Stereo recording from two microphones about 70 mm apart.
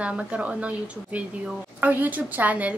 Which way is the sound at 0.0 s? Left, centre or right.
Centre.